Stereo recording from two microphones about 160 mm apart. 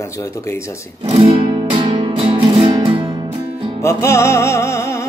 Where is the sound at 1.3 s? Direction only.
25° right (ahead or behind).